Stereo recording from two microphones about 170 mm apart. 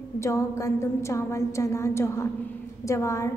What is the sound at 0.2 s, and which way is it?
A woman's voice, 15° left (ahead or behind).